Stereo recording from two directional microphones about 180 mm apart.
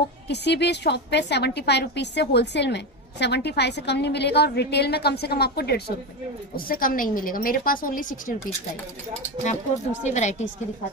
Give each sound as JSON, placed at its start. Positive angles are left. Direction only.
{"t": 0.3, "sound": "a woman's voice", "side_deg": 70}
{"t": 10.0, "sound": "a woman's voice", "side_deg": 40}